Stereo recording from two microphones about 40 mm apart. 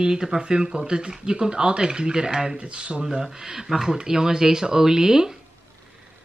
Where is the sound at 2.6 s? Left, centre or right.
Right.